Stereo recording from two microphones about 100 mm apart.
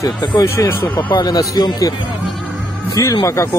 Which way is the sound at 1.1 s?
40° left (ahead or behind).